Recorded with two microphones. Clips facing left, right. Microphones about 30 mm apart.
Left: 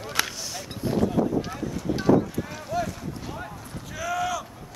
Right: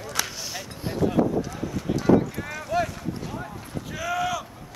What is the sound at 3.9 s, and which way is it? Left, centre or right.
Boat, centre.